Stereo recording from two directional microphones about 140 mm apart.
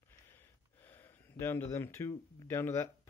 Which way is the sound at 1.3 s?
15° left (ahead or behind).